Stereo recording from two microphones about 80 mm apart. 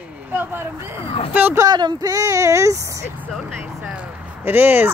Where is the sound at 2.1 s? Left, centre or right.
Right.